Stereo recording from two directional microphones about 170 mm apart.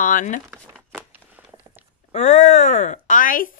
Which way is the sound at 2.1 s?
40° left (ahead or behind).